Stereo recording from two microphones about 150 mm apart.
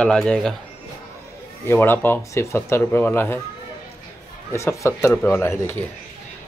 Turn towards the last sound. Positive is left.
turn(degrees=15)  # may be behind; listen again after turning